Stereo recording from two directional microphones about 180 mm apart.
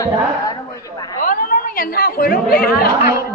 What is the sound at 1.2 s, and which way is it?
Chatter, 50° left (ahead or behind).